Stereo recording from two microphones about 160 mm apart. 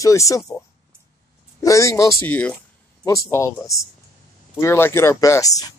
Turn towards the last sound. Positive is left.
turn(degrees=20)  # may be behind; listen again after turning